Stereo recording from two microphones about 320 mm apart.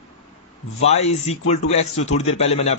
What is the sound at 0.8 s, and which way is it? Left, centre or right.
A man's voice, centre.